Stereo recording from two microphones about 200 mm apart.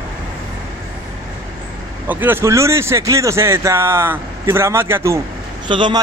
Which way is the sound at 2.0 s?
10° right (ahead or behind).